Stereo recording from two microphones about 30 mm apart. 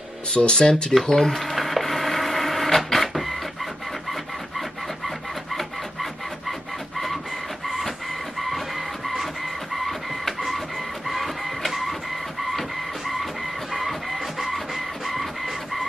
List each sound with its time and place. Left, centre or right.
0.3 s speech: left
1.0 s speech: centre
1.3 s wood: centre
4.6 s wood: centre
7.6 s printer: centre
8.4 s music: centre
9.8 s printer: centre
13.1 s music: centre